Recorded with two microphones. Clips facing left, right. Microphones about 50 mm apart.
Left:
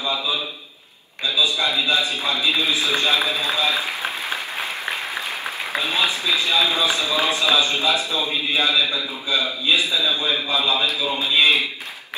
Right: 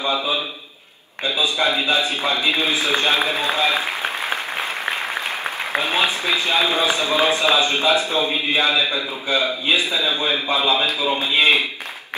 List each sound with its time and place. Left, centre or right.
0.0 s speech: right
5.7 s speech: right